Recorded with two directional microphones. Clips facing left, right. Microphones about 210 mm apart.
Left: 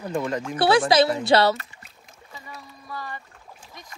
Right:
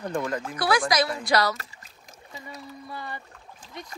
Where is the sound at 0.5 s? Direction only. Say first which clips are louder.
Left 6 dB; 25° left (ahead or behind).